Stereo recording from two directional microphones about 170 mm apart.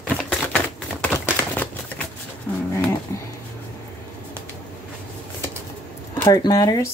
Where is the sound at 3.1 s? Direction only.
15° left (ahead or behind).